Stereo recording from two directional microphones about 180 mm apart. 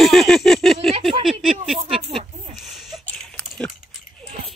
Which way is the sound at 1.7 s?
30° right (ahead or behind).